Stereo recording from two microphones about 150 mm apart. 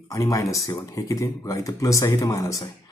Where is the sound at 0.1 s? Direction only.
20° left (ahead or behind).